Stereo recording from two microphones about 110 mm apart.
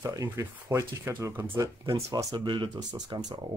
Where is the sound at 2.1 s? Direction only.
40° right (ahead or behind).